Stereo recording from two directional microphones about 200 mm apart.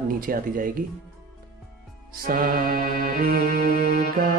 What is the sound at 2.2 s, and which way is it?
Speech, 45° right (ahead or behind).